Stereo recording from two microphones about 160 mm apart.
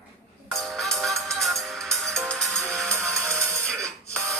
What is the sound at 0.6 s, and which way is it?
Music, centre (ahead or behind).